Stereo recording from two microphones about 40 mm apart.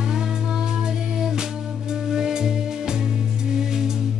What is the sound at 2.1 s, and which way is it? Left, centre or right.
Music, centre.